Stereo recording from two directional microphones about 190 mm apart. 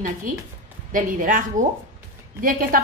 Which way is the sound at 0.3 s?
45° right (ahead or behind).